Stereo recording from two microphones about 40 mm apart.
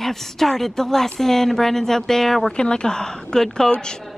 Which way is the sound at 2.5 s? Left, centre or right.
Left.